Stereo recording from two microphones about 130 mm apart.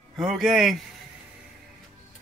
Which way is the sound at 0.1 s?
Centre (ahead or behind).